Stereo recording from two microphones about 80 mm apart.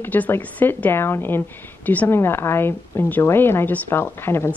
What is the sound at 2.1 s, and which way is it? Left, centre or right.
Speech, left.